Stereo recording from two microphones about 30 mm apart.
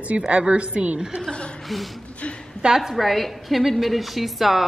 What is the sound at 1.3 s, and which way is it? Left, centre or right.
Speech, left.